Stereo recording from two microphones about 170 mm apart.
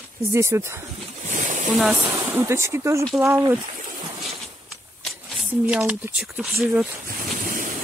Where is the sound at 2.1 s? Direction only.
15° right (ahead or behind).